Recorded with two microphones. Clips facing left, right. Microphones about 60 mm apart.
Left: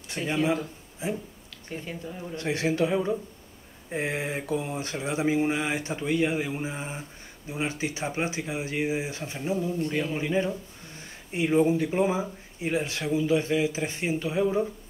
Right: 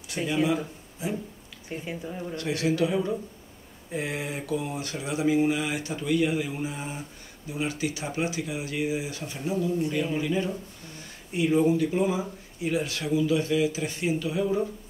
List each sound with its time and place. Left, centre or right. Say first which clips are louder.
0.2 s a man's voice: right 1 dB; centre
1.0 s speech: even; left
1.7 s speech: right 2 dB; centre
2.3 s speech: even; left